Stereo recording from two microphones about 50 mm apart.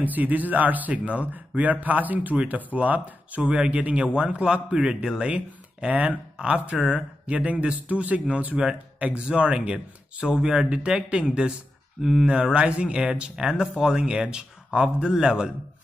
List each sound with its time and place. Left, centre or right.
0.0 s speech: right
3.4 s a man's voice: centre
12.0 s speech: centre
12.3 s speech: right